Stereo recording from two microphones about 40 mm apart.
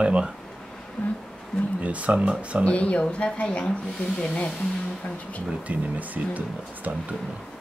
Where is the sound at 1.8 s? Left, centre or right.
Right.